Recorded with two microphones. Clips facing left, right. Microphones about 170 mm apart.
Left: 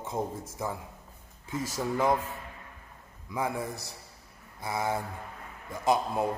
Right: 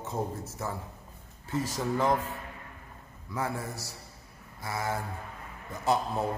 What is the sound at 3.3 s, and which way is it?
A man's voice, 15° left (ahead or behind).